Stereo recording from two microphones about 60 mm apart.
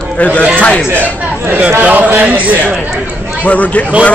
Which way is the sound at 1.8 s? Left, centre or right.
Right.